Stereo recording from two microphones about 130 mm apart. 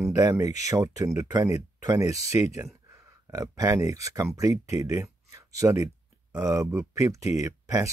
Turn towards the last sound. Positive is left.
turn(degrees=-25)  # may be behind; listen again after turning